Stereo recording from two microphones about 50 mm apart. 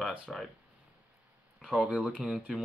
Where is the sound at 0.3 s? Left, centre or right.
Centre.